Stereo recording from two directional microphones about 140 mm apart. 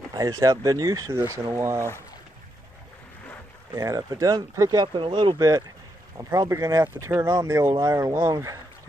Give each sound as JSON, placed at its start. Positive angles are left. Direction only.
{"t": 0.1, "sound": "speech", "side_deg": -25}
{"t": 3.7, "sound": "speech", "side_deg": -25}